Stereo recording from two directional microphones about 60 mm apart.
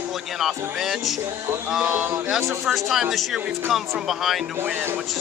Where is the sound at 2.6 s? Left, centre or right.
Centre.